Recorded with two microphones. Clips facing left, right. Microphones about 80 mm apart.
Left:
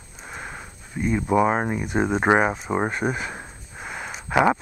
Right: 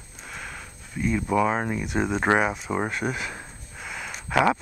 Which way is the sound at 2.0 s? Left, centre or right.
Centre.